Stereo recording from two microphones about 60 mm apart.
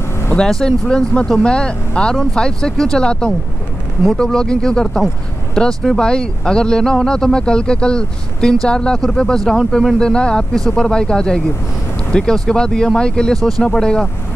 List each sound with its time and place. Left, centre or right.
0.4 s speech: centre